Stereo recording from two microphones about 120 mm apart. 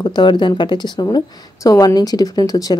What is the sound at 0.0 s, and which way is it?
A woman's voice, 40° left (ahead or behind).